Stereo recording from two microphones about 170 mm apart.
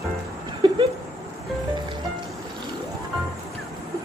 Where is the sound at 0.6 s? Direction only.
25° right (ahead or behind).